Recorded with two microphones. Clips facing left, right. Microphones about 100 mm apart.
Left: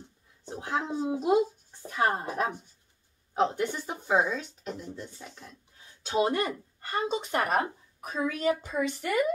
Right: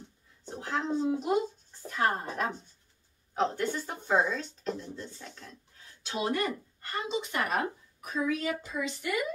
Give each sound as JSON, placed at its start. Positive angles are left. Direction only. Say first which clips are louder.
{"t": 0.6, "sound": "speech", "louder": "even", "side_deg": 15}
{"t": 6.0, "sound": "speech", "louder": "left 4 dB", "side_deg": 30}